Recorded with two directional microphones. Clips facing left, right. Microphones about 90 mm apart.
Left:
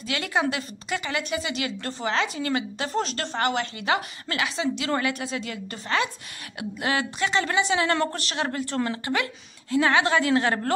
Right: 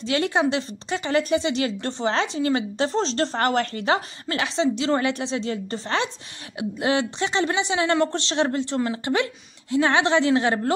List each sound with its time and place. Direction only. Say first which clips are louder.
0.0 s a woman's voice: right 4 dB; 30° right (ahead or behind)